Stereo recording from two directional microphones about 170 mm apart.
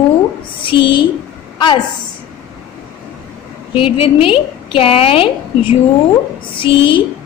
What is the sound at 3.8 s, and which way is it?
A woman's voice, 30° left (ahead or behind).